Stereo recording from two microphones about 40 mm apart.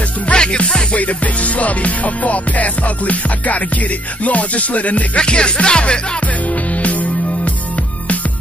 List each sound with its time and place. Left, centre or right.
0.3 s music: left
0.9 s music: left
5.2 s music: left
6.2 s music: left